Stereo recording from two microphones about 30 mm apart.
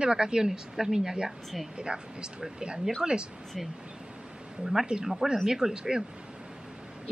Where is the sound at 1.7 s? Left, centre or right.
Right.